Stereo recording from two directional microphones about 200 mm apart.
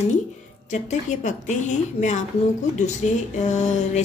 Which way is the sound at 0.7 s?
35° left (ahead or behind).